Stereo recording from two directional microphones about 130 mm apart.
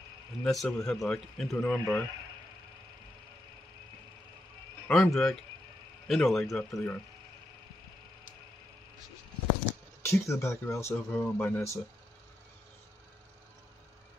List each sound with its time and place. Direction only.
0.4 s speech: centre (ahead or behind)
1.6 s speech: 20° left (ahead or behind)
4.8 s speech: 5° left (ahead or behind)
6.7 s speech: 20° left (ahead or behind)
10.0 s speech: 25° left (ahead or behind)